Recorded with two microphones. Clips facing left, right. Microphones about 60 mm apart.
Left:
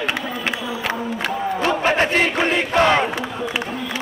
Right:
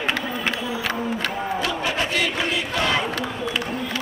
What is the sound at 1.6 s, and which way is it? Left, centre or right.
Battle cry, left.